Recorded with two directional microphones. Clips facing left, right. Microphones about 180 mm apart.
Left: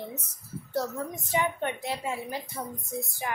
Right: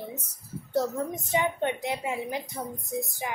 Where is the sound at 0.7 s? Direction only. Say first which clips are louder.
Right 4 dB; 25° right (ahead or behind).